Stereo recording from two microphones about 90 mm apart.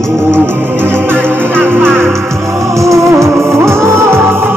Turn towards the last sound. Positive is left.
turn(degrees=-25)  # may be behind; listen again after turning